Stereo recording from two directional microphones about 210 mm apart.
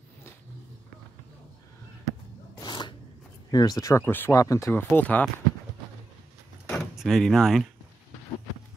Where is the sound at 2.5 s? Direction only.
20° left (ahead or behind).